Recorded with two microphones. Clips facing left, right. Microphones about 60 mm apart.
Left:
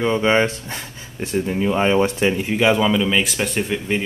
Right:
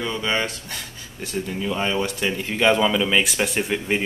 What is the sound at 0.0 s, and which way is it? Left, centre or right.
Speech, left.